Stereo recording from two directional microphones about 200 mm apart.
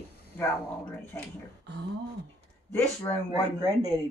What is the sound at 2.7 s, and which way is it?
Speech, 10° left (ahead or behind).